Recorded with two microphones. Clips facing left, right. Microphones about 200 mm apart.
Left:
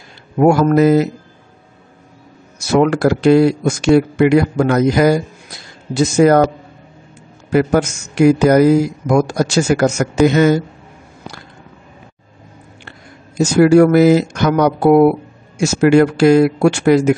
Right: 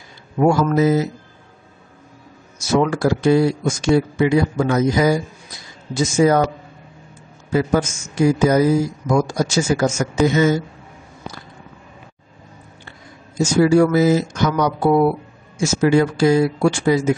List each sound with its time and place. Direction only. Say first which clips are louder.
0.4 s speech: left 5 dB; 60° left (ahead or behind)
2.7 s speech: left 4 dB; 70° left (ahead or behind)
7.5 s speech: left 4 dB; 70° left (ahead or behind)
13.4 s speech: left 5 dB; 65° left (ahead or behind)